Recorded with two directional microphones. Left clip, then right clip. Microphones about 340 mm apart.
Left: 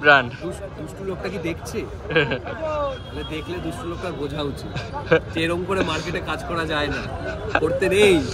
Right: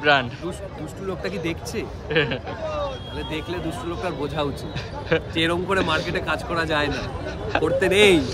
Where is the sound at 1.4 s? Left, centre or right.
Right.